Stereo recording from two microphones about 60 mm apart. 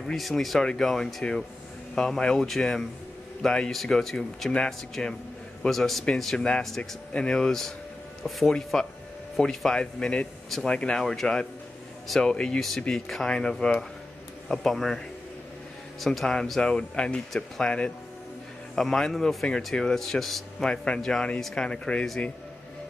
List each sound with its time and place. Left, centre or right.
0.0 s speech: centre
16.0 s speech: centre
20.7 s speech: centre
21.6 s speech: centre